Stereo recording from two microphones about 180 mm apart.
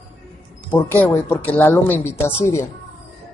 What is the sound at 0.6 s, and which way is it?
Speech, 10° left (ahead or behind).